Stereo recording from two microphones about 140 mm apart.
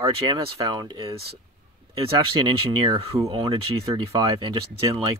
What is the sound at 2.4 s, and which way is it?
Speech, 35° right (ahead or behind).